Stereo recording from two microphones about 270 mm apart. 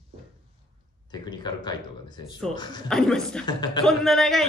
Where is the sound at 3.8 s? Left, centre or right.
Centre.